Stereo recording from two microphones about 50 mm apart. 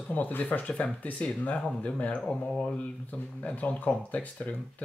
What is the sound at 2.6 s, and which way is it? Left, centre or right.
Speech, left.